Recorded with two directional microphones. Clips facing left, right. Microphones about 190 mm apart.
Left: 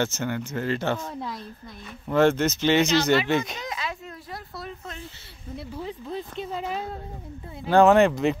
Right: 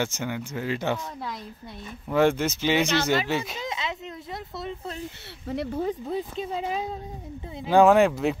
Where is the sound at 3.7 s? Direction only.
20° right (ahead or behind).